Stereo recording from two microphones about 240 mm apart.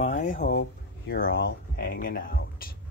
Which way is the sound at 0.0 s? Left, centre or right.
Left.